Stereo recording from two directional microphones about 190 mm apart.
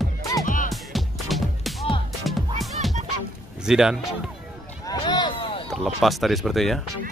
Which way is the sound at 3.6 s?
5° right (ahead or behind).